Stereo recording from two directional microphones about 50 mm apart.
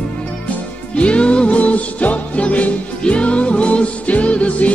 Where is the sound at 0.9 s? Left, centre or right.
Left.